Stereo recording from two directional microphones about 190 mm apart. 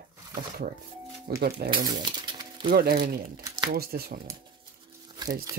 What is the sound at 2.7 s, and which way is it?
Speech, 55° right (ahead or behind).